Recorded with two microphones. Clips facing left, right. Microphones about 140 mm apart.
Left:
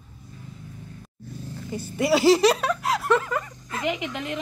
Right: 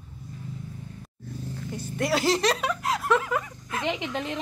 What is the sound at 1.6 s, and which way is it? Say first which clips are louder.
Speech: left 5 dB; 5° left (ahead or behind).